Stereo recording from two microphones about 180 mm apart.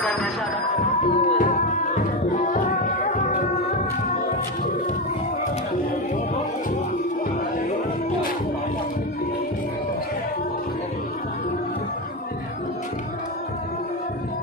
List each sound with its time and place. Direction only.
0.0 s music: 5° left (ahead or behind)
1.0 s music: 40° left (ahead or behind)